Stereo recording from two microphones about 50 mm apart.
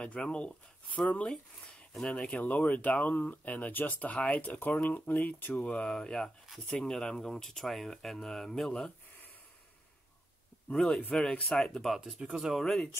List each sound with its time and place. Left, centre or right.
0.0 s speech: left
5.9 s speech: centre
10.7 s speech: centre
12.0 s speech: centre